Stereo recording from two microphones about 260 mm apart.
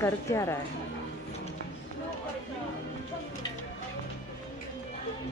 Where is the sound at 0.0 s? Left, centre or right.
Centre.